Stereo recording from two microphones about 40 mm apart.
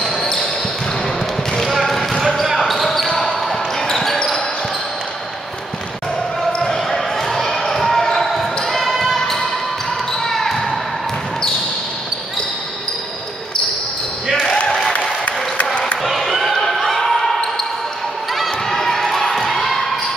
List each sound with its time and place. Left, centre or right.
0.0 s basketball bounce: centre
1.6 s basketball bounce: centre
2.3 s a sound: centre
2.6 s basketball bounce: centre
6.6 s basketball bounce: centre
10.2 s basketball bounce: centre
14.9 s applause: left
16.0 s basketball bounce: centre
18.3 s crowd: centre